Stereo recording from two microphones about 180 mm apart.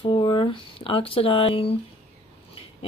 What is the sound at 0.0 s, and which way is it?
Speech, 25° left (ahead or behind).